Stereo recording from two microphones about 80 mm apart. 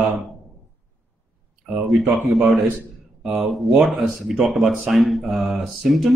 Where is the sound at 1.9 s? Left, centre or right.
Centre.